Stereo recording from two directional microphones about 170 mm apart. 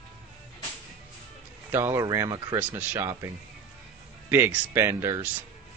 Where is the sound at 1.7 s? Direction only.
15° right (ahead or behind).